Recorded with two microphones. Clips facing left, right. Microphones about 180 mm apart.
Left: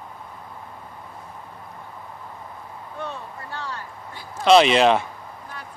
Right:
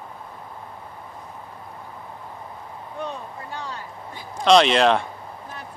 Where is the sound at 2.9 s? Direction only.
15° right (ahead or behind).